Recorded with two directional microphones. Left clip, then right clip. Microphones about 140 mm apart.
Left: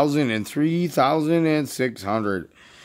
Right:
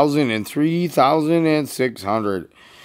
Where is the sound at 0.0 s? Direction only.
10° left (ahead or behind).